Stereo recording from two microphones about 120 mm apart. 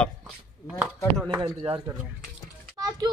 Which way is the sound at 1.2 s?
40° right (ahead or behind).